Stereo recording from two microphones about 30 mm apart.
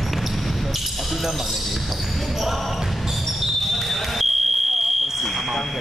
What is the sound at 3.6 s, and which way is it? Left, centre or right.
Smoke detector, centre.